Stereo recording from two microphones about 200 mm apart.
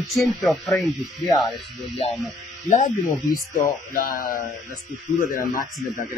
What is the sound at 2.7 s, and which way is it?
Speech, 45° left (ahead or behind).